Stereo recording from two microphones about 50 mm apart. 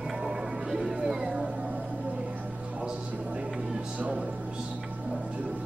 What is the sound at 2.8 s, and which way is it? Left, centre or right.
Music, centre.